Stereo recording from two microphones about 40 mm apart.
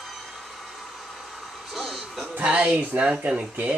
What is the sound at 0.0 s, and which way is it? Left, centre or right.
Vehicle, centre.